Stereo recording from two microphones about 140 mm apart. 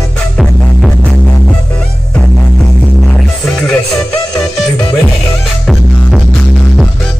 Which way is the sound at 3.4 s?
5° left (ahead or behind).